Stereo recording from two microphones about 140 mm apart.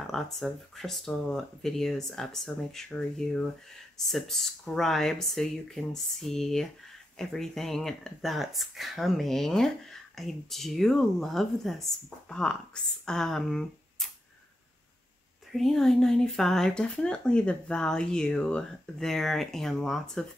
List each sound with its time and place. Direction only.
0.0 s speech: centre (ahead or behind)
15.5 s speech: centre (ahead or behind)